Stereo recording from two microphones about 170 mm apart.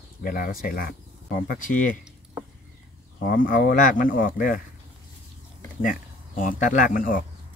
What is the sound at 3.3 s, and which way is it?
Speech, 60° left (ahead or behind).